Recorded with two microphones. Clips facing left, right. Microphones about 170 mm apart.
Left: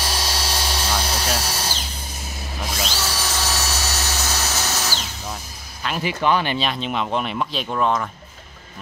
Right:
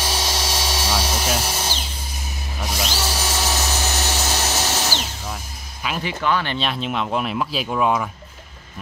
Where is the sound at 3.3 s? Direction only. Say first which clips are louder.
Right 2 dB; 15° right (ahead or behind).